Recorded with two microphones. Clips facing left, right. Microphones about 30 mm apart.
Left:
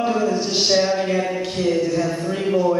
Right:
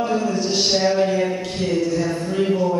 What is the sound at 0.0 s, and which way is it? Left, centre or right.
Speech, centre.